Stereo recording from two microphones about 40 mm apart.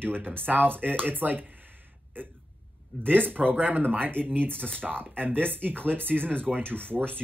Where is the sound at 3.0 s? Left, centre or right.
Right.